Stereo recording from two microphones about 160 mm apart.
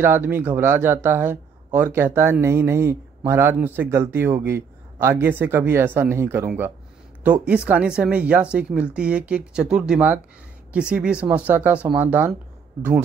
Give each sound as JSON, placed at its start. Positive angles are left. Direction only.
{"t": 0.0, "sound": "speech", "side_deg": -15}